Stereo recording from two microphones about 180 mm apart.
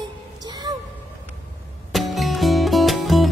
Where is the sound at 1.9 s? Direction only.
Centre (ahead or behind).